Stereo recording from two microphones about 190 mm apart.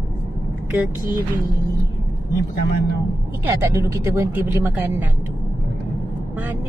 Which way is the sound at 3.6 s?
15° right (ahead or behind).